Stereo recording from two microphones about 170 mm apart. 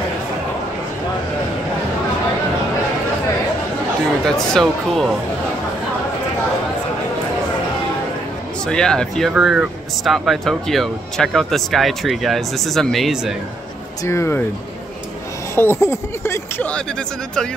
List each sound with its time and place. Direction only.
4.2 s speech: 5° left (ahead or behind)
8.6 s speech: 5° left (ahead or behind)
14.0 s speech: 15° left (ahead or behind)
15.5 s speech: 15° left (ahead or behind)